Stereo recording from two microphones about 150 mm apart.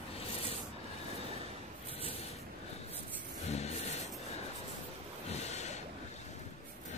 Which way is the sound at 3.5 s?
45° left (ahead or behind).